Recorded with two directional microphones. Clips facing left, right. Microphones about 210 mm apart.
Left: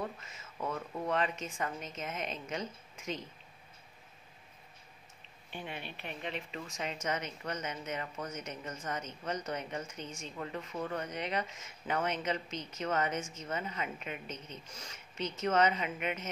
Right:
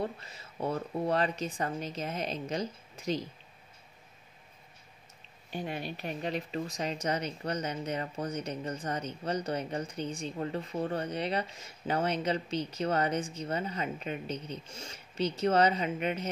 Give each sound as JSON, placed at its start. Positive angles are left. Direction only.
{"t": 0.0, "sound": "speech", "side_deg": -35}
{"t": 5.5, "sound": "speech", "side_deg": -40}